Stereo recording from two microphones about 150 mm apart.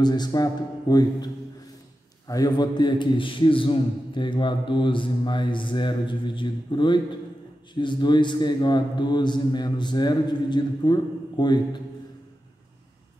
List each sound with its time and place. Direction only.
0.0 s a man's voice: 30° left (ahead or behind)